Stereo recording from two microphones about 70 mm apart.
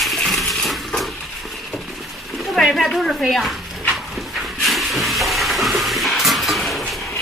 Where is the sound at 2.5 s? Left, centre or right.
Centre.